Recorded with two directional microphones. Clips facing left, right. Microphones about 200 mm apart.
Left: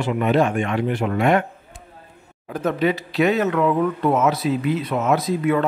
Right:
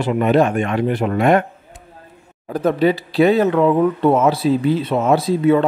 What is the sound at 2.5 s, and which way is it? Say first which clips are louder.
Speech: right 5 dB; 35° right (ahead or behind).